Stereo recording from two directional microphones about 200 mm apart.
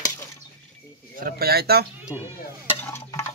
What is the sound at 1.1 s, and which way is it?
Speech, 45° right (ahead or behind).